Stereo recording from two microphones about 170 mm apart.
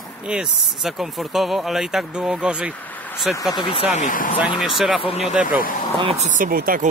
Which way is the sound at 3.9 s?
50° left (ahead or behind).